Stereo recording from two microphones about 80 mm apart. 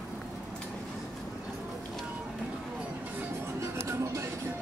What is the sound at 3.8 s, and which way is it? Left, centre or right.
Music, right.